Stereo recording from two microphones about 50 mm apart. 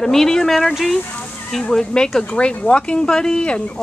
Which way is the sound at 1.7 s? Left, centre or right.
Centre.